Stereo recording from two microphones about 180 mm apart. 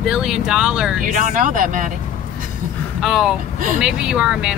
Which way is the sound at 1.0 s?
45° right (ahead or behind).